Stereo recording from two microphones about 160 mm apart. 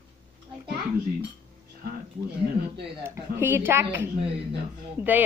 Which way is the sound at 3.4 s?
15° right (ahead or behind).